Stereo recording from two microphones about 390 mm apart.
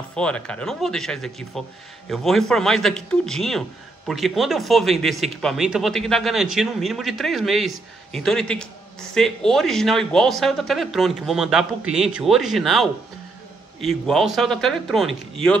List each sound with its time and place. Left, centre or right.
0.1 s a man's voice: centre